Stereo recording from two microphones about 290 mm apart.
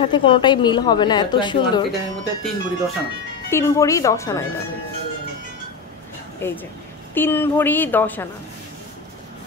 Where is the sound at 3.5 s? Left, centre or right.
Centre.